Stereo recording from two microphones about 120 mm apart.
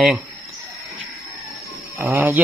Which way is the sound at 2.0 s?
15° right (ahead or behind).